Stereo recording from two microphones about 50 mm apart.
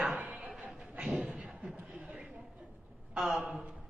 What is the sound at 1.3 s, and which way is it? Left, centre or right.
Beatboxing, right.